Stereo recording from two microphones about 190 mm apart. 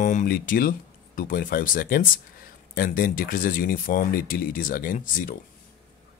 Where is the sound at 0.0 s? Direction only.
45° left (ahead or behind).